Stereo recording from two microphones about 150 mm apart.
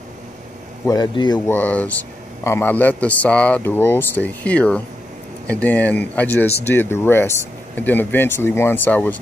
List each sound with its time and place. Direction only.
0.8 s a man's voice: 30° left (ahead or behind)
1.5 s speech: 10° left (ahead or behind)